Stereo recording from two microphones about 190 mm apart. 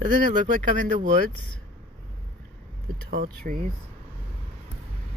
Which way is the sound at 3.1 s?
45° right (ahead or behind).